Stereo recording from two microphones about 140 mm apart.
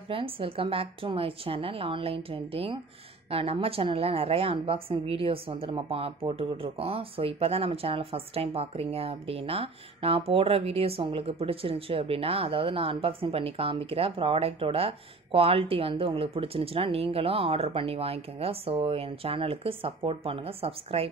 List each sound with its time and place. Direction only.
0.1 s a woman's voice: 40° right (ahead or behind)